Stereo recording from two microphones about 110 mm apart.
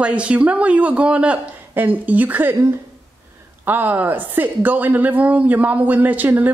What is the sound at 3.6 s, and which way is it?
A woman's voice, 15° right (ahead or behind).